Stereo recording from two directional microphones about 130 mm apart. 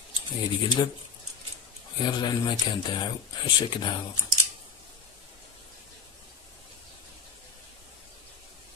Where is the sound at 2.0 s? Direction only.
35° left (ahead or behind).